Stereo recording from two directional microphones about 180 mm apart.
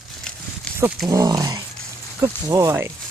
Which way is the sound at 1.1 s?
20° right (ahead or behind).